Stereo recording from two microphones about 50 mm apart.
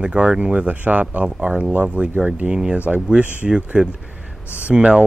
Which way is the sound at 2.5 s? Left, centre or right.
Centre.